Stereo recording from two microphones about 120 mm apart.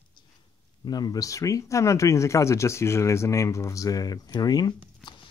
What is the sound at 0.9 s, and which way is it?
Speech, 35° left (ahead or behind).